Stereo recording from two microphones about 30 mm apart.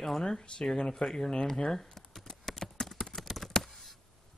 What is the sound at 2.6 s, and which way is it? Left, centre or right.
Clip-clop, centre.